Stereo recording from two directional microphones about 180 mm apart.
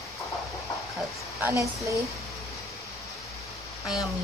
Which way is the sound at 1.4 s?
15° right (ahead or behind).